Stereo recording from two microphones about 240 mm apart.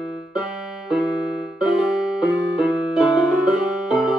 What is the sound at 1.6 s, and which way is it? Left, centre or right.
Music, centre.